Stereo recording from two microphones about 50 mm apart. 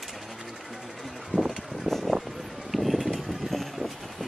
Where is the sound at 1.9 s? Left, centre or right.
Centre.